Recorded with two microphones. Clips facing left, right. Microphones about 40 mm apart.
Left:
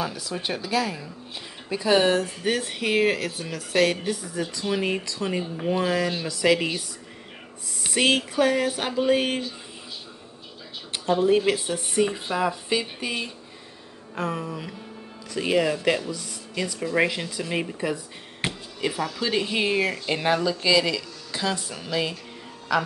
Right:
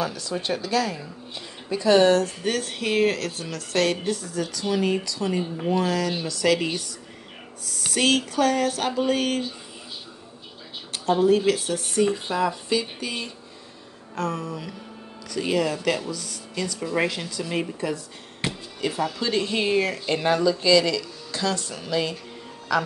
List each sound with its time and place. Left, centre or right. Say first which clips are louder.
0.0 s speech: right 2 dB; centre
4.3 s speech: right 1 dB; left
7.6 s speech: even; left
11.2 s speech: right 1 dB; left
14.1 s speech: right 1 dB; centre